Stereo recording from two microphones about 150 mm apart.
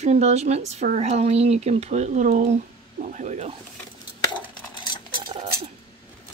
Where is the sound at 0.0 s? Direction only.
45° right (ahead or behind).